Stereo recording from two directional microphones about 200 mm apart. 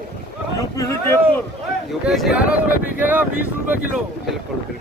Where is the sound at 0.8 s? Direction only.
15° left (ahead or behind).